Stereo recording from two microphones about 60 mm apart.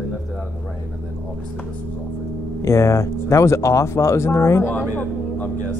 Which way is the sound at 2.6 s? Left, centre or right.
Left.